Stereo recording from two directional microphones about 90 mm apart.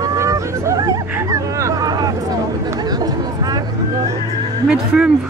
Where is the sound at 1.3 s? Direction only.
40° right (ahead or behind).